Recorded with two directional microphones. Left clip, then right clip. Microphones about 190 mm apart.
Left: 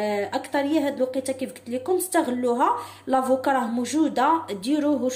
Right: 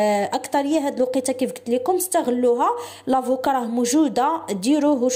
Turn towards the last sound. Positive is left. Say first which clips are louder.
# right 5 dB
turn(degrees=-35)  # may be behind; listen again after turning